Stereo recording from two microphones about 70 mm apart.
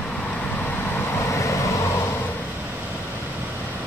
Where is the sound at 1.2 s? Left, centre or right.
Left.